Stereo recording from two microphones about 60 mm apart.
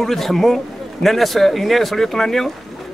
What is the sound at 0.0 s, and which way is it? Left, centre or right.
A man's voice, centre.